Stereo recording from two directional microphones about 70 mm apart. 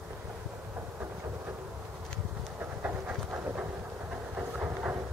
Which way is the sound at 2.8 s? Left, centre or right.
Right.